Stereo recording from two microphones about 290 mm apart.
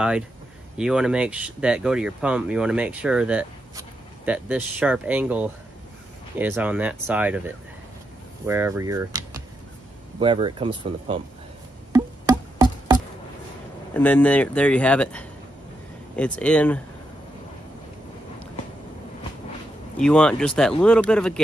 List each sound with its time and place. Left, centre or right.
0.7 s speech: centre
11.9 s music: centre
13.9 s speech: centre
20.0 s speech: centre